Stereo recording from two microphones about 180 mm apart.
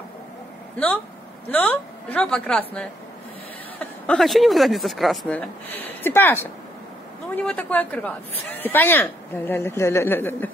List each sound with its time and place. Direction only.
1.5 s speech: 10° left (ahead or behind)